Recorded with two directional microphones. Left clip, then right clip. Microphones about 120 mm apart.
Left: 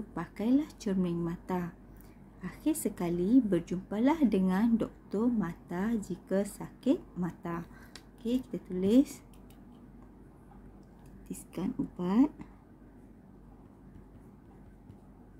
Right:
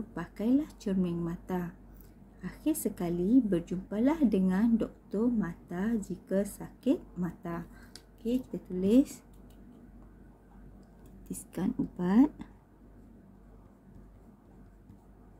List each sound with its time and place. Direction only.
0.1 s a woman's voice: 15° left (ahead or behind)
11.2 s a woman's voice: 20° right (ahead or behind)